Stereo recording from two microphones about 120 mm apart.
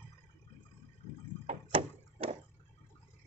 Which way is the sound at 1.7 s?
55° right (ahead or behind).